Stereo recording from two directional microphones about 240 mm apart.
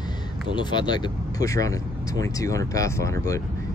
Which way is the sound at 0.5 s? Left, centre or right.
Centre.